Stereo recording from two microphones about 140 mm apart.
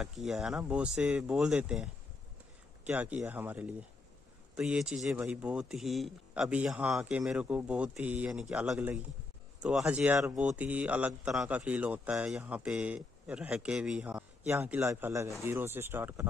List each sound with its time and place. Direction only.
0.0 s speech: centre (ahead or behind)
2.9 s a man's voice: 10° right (ahead or behind)